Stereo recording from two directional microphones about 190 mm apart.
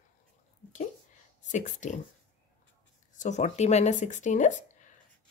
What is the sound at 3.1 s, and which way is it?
A woman's voice, 40° left (ahead or behind).